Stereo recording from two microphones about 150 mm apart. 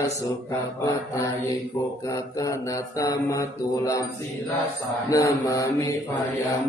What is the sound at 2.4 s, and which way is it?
Mantra, 20° left (ahead or behind).